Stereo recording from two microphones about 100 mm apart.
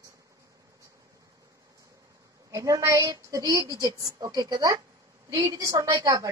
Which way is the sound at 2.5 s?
35° right (ahead or behind).